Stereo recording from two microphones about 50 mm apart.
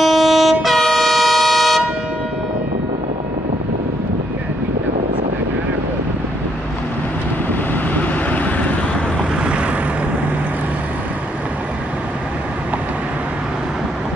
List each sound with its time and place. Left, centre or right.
0.0 s vehicle: centre
7.9 s vehicle: left
9.4 s boat: right